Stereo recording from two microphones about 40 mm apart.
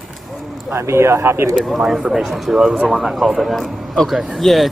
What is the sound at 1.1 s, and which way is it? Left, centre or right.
Speech, right.